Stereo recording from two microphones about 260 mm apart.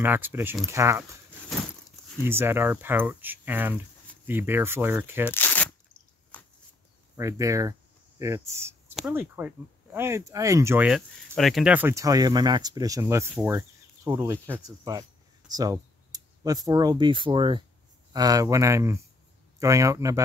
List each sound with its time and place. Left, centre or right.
0.0 s speech: centre
2.1 s speech: centre
5.3 s crunch: centre
7.2 s speech: centre
15.5 s a sound: centre
16.6 s speech: centre